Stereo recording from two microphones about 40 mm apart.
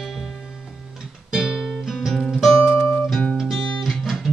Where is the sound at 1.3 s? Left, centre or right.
Centre.